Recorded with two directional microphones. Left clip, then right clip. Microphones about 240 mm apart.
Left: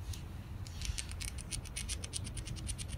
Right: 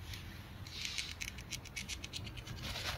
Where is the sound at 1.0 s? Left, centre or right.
Centre.